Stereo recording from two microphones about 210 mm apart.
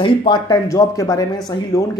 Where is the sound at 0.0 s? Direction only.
25° left (ahead or behind).